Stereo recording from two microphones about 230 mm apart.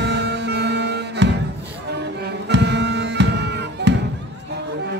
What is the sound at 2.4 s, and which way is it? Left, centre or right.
Music, right.